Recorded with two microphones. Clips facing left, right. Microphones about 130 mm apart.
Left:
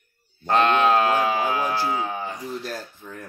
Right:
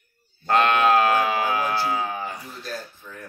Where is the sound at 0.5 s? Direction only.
20° left (ahead or behind).